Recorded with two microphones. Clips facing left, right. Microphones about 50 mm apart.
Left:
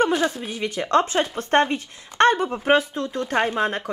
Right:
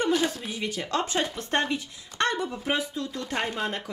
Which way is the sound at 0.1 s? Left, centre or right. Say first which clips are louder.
Left 3 dB; centre.